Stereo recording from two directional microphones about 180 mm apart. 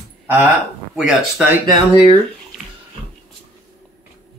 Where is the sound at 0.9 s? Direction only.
5° right (ahead or behind).